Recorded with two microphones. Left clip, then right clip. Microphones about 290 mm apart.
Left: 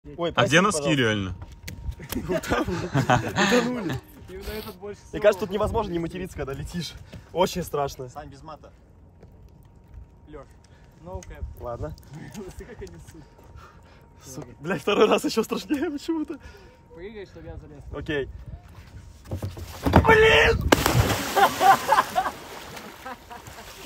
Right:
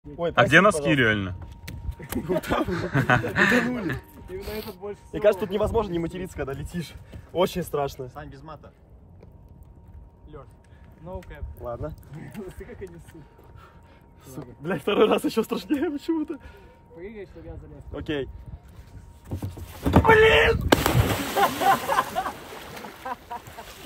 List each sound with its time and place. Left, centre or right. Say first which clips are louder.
0.2 s speech: right 3 dB; centre
8.1 s speech: left 1 dB; left
11.1 s speech: right 1 dB; left
11.6 s speech: even; centre
14.6 s speech: left 1 dB; centre
17.0 s speech: even; left
17.9 s speech: left 1 dB; centre
20.0 s speech: even; centre
21.8 s speech: left 3 dB; left
22.3 s boat: even; centre